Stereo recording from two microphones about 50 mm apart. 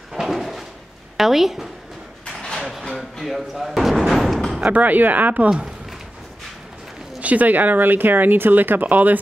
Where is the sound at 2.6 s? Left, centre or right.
Centre.